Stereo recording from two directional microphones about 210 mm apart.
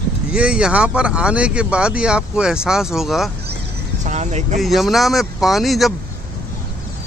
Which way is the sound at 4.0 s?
35° right (ahead or behind).